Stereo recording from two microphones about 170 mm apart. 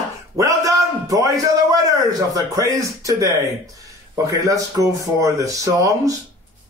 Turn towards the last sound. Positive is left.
turn(degrees=-20)  # may be behind; listen again after turning